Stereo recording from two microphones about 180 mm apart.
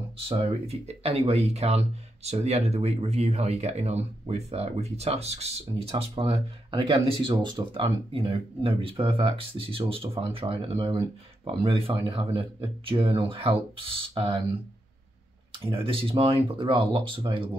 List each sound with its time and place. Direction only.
0.2 s speech: 30° right (ahead or behind)
15.5 s speech: 30° right (ahead or behind)